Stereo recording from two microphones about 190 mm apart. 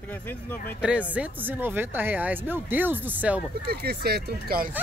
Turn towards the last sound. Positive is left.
turn(degrees=-50)  # may be behind; listen again after turning